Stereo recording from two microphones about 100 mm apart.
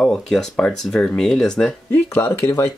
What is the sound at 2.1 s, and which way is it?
Speech, 25° left (ahead or behind).